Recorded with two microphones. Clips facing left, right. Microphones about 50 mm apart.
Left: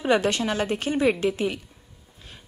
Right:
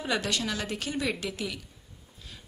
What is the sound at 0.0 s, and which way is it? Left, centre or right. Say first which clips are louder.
Speech: left 8 dB; left.